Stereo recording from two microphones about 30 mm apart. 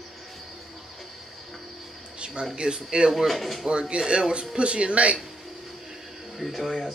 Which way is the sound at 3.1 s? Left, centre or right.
Centre.